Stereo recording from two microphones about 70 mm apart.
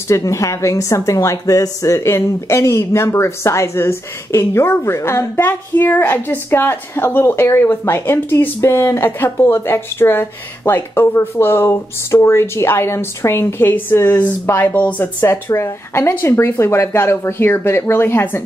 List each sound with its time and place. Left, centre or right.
0.1 s a woman's voice: left
15.2 s a woman's voice: left